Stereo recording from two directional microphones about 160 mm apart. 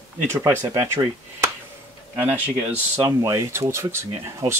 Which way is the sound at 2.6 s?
15° right (ahead or behind).